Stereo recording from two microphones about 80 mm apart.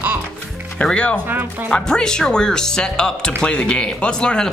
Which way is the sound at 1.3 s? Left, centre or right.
Right.